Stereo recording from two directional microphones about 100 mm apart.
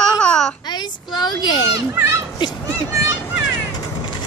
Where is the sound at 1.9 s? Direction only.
30° right (ahead or behind).